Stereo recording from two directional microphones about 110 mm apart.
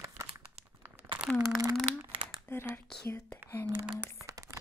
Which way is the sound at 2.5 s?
20° left (ahead or behind).